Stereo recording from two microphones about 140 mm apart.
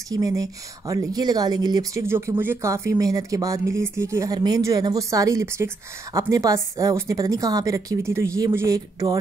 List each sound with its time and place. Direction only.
0.1 s speech: 25° right (ahead or behind)